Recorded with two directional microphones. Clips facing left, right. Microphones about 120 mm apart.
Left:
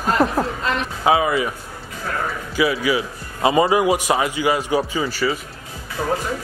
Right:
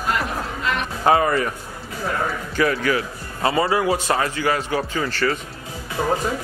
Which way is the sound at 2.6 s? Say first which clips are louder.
Left 1 dB; 10° left (ahead or behind).